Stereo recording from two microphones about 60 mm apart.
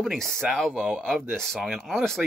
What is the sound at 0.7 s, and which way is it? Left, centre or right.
Speech, right.